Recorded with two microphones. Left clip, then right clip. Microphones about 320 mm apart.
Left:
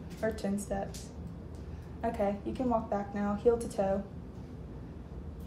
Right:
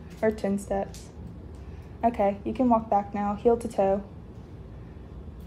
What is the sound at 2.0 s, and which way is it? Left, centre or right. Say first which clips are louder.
A woman's voice: right 8 dB; right.